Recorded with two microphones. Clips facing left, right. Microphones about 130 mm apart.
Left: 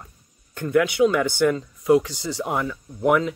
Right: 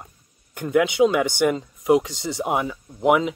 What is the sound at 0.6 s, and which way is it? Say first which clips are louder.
Speech: right 1 dB; 20° right (ahead or behind).